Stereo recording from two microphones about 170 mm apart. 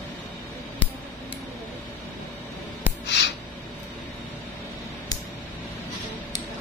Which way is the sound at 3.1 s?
90° left.